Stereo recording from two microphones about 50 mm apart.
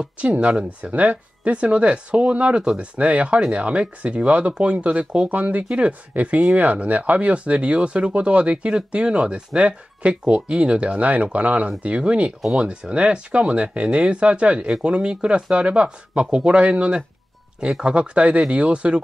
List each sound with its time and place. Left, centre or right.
0.0 s speech: right
17.9 s speech: right